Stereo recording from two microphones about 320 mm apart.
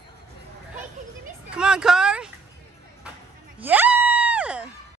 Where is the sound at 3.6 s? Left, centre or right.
Centre.